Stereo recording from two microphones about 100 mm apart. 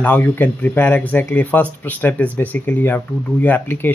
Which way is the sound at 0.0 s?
20° left (ahead or behind).